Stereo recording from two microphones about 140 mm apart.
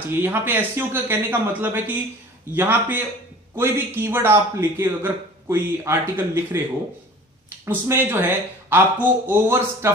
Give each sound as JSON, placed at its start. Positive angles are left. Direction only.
{"t": 0.1, "sound": "a man's voice", "side_deg": -15}
{"t": 7.6, "sound": "a man's voice", "side_deg": -15}